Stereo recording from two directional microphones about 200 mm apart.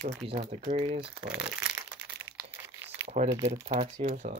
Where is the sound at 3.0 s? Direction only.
35° right (ahead or behind).